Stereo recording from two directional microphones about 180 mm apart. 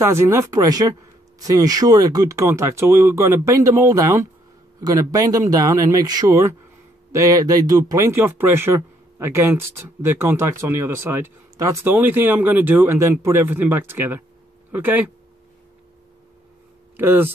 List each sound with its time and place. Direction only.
0.0 s speech: 15° right (ahead or behind)
16.9 s speech: 10° right (ahead or behind)